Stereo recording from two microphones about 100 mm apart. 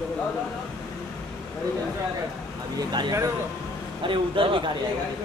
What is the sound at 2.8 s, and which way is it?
Speech, 45° right (ahead or behind).